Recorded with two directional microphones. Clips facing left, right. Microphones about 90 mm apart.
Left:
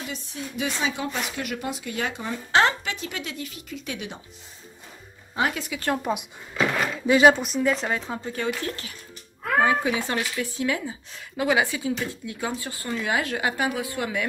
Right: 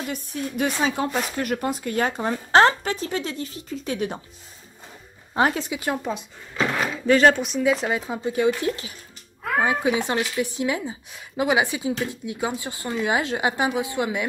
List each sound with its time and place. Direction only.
0.1 s speech: 50° right (ahead or behind)
5.3 s speech: 35° right (ahead or behind)
6.0 s speech: 5° left (ahead or behind); by 14.2 s 20° right (ahead or behind)